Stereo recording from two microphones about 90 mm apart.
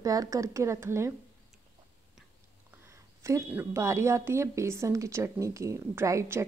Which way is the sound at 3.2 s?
30° right (ahead or behind).